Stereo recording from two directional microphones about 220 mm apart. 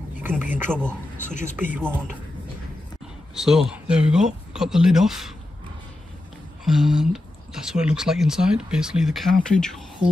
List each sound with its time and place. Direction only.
0.2 s a sound: 10° right (ahead or behind)
0.7 s speech: 10° right (ahead or behind)
1.3 s speech: 35° left (ahead or behind)
1.6 s speech: 10° right (ahead or behind)
3.3 s speech: centre (ahead or behind)
6.6 s speech: centre (ahead or behind)